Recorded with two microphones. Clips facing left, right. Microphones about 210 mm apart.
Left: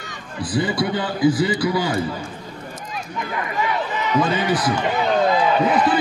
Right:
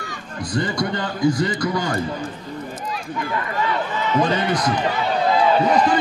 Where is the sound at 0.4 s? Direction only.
5° left (ahead or behind).